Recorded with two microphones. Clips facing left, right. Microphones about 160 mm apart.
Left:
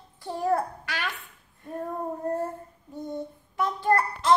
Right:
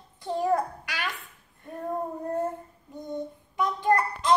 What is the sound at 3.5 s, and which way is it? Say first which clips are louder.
Child singing: even; 15° right (ahead or behind).